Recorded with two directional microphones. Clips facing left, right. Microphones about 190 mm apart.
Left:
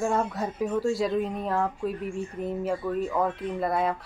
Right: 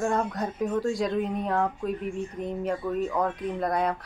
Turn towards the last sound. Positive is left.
turn(degrees=5)  # may be behind; listen again after turning